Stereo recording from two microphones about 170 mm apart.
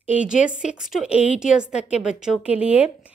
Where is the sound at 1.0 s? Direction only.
40° left (ahead or behind).